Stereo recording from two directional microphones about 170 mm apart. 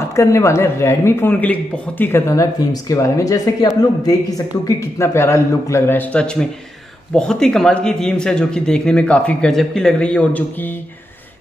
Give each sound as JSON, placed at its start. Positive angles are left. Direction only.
{"t": 0.1, "sound": "a man's voice", "side_deg": 15}